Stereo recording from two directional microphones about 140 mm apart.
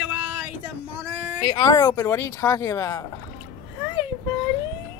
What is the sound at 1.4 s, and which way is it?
A child's voice, 30° left (ahead or behind).